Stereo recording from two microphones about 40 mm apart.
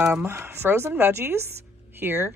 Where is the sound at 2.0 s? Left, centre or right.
Right.